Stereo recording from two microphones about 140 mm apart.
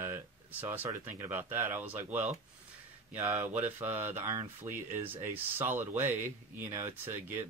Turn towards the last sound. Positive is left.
turn(degrees=-15)  # may be behind; listen again after turning